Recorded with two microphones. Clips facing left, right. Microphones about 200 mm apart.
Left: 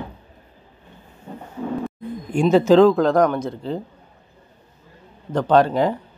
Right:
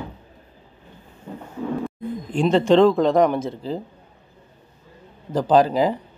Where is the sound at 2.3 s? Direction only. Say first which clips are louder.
Left 2 dB; 10° left (ahead or behind).